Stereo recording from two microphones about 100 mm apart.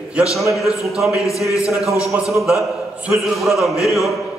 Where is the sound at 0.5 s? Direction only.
Centre (ahead or behind).